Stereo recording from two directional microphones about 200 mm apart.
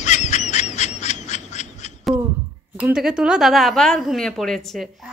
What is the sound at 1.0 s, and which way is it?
Duck, 35° left (ahead or behind).